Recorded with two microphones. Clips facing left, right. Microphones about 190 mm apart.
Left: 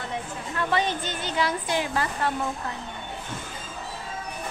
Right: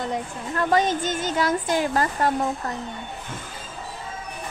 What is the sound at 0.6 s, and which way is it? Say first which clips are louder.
A woman's voice: right 5 dB; 45° right (ahead or behind).